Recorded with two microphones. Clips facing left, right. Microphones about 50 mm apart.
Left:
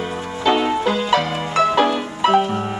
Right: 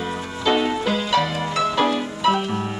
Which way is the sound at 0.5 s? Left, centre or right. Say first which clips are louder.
Left 3 dB; centre.